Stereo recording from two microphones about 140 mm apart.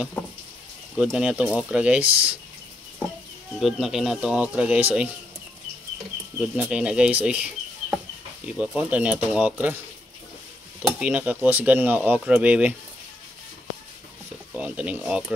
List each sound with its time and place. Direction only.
0.9 s speech: 5° right (ahead or behind)
3.5 s speech: centre (ahead or behind)
6.5 s speech: 10° right (ahead or behind)
10.8 s speech: 10° right (ahead or behind)
14.5 s speech: 10° right (ahead or behind)